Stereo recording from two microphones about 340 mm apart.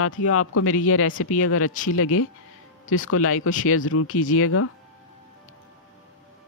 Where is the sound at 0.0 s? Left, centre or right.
Left.